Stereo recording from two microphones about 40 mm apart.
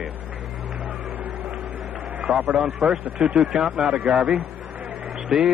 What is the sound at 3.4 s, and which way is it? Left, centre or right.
Speech, centre.